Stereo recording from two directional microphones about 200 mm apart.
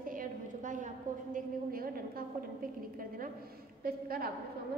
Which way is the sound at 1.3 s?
45° right (ahead or behind).